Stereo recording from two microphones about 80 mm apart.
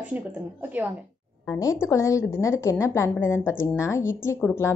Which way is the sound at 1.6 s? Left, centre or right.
Left.